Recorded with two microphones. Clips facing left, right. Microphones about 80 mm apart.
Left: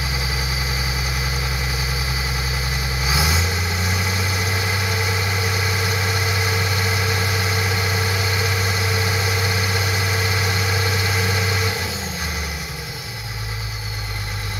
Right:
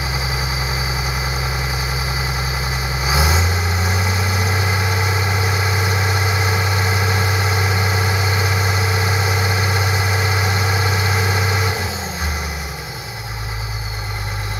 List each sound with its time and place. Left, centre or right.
3.1 s vehicle: right
5.9 s vehicle: right